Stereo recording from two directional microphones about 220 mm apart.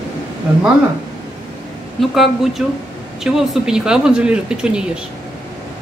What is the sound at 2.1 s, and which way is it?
Speech, centre (ahead or behind).